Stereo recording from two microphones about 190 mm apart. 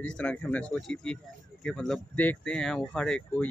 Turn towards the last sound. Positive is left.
turn(degrees=5)  # may be behind; listen again after turning